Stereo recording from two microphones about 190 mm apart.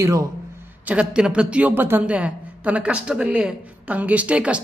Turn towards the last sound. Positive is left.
turn(degrees=-5)  # may be behind; listen again after turning